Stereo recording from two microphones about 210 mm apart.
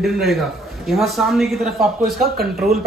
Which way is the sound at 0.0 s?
Centre (ahead or behind).